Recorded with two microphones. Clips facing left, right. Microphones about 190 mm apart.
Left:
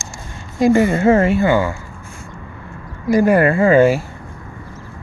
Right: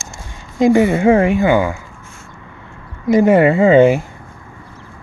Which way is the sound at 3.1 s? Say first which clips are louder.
Right 2 dB; 20° right (ahead or behind).